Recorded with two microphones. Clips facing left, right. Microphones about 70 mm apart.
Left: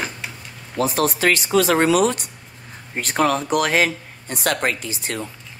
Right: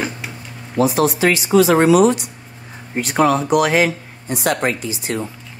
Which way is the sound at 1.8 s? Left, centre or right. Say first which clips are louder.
Right 5 dB; right.